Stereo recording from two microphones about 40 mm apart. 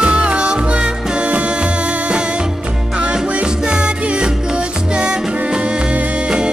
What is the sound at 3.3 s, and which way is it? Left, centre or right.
Music, right.